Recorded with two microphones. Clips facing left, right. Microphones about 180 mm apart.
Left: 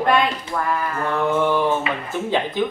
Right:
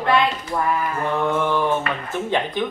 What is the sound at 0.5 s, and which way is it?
Speech, 20° right (ahead or behind).